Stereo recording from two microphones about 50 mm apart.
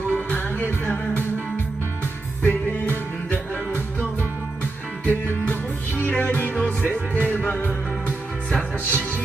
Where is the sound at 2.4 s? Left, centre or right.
Left.